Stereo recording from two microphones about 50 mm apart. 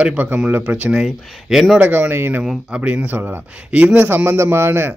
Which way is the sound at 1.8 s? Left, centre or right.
Right.